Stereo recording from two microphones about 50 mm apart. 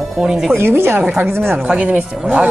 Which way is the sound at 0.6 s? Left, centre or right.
Right.